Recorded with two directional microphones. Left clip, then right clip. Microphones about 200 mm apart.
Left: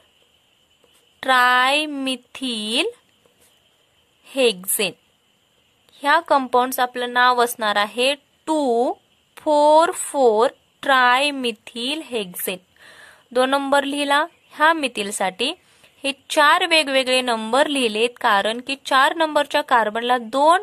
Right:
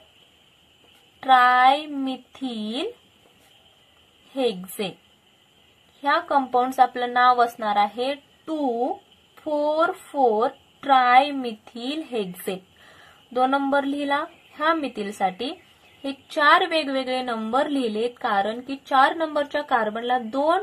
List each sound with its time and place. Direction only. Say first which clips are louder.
1.2 s a woman's voice: even; 45° left (ahead or behind)
4.4 s a woman's voice: left 6 dB; 45° left (ahead or behind)
6.0 s a woman's voice: left 4 dB; 50° left (ahead or behind)